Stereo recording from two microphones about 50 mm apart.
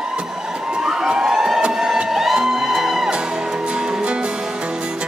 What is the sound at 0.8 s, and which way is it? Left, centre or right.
Music, centre.